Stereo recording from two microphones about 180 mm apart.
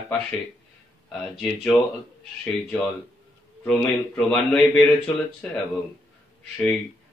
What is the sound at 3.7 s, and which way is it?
Speech, 5° left (ahead or behind).